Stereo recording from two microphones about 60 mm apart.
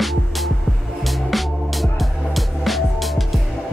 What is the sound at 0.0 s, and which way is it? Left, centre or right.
Music, centre.